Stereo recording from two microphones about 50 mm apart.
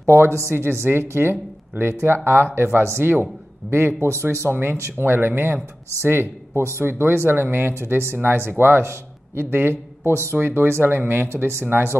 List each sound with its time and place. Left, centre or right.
0.0 s speech: right
6.0 s speech: right